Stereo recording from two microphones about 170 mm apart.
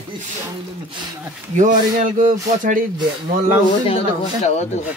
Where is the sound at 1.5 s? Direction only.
50° right (ahead or behind).